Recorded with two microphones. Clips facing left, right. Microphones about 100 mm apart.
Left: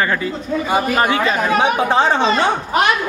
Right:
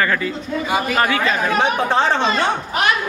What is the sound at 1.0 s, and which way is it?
Speech, 25° left (ahead or behind).